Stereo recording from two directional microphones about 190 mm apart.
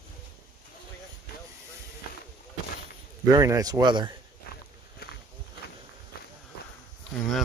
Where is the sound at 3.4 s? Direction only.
20° right (ahead or behind).